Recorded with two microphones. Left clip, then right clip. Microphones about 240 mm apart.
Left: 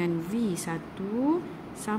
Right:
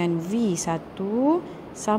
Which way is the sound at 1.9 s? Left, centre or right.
Centre.